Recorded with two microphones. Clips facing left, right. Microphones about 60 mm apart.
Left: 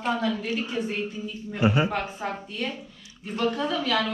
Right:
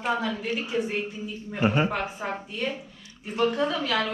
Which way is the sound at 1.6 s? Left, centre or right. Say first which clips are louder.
Left 1 dB; right.